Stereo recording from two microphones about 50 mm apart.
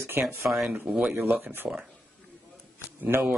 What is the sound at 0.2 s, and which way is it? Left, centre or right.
Speech, right.